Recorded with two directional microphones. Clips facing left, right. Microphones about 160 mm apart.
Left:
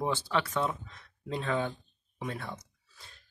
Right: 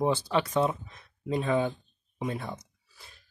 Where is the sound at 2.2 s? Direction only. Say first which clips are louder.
Right 4 dB; 15° right (ahead or behind).